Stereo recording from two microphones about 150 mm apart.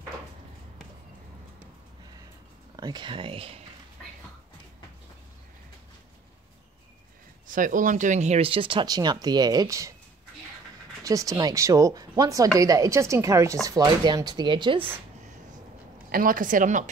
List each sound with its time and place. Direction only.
2.7 s speech: 25° right (ahead or behind)
7.4 s speech: 60° right (ahead or behind); by 9.9 s 20° right (ahead or behind)
11.1 s speech: 20° right (ahead or behind)
16.1 s a woman's voice: 65° right (ahead or behind)